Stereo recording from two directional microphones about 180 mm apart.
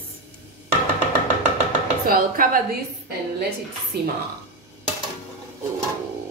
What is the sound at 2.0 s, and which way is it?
Speech, 55° right (ahead or behind).